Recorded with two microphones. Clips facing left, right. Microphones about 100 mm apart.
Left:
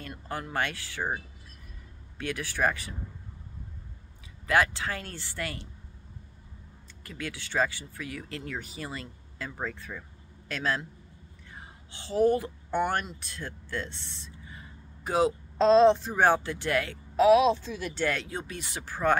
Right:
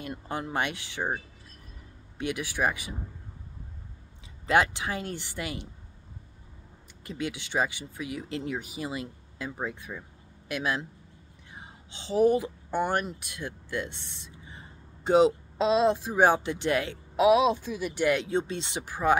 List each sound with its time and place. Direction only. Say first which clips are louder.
0.0 s speech: right 3 dB; 20° right (ahead or behind)
2.1 s speech: right 2 dB; 15° right (ahead or behind)
4.5 s speech: right 1 dB; 20° right (ahead or behind)
7.1 s speech: right 4 dB; 20° right (ahead or behind)
15.5 s speech: left 4 dB; 10° right (ahead or behind)